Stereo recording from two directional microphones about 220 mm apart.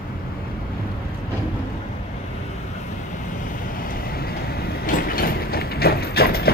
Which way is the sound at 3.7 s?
40° left (ahead or behind).